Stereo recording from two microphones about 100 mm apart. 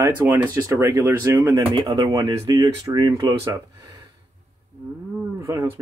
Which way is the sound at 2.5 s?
45° right (ahead or behind).